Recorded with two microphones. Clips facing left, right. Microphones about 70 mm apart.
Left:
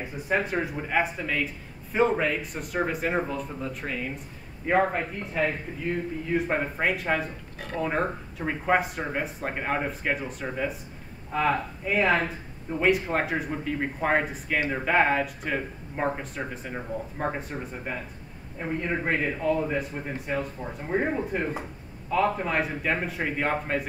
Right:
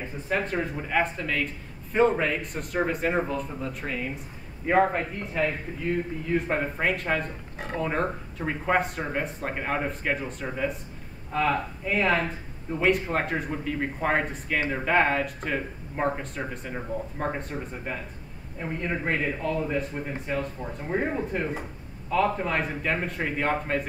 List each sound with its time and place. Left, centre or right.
0.3 s a man's voice: centre
7.5 s speech: right
7.8 s a man's voice: centre